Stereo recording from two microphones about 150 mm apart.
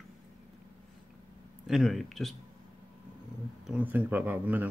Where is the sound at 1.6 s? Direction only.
Centre (ahead or behind).